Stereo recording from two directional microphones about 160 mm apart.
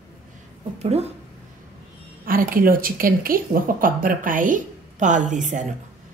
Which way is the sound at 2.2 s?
60° right (ahead or behind).